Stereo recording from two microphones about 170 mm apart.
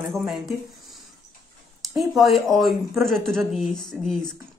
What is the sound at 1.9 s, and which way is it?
Speech, centre (ahead or behind).